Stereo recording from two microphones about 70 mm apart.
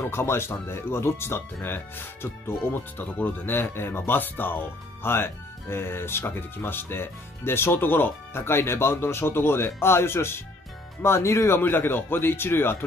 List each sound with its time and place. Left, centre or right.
0.0 s speech: left